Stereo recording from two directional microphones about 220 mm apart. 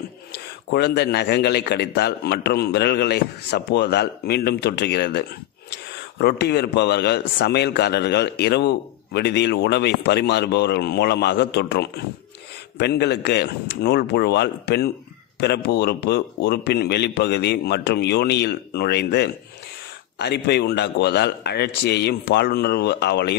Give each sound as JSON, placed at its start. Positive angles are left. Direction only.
{"t": 0.3, "sound": "a man's voice", "side_deg": 50}